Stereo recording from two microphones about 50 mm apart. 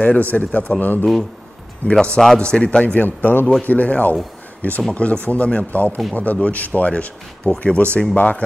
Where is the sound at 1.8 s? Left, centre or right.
Right.